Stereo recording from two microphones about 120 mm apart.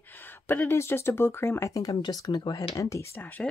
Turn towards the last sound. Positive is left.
turn(degrees=15)  # may be behind; listen again after turning